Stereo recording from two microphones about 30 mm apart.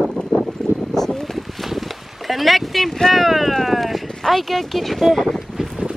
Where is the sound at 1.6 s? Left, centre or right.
Centre.